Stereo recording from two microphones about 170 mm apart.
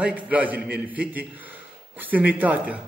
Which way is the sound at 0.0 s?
10° right (ahead or behind).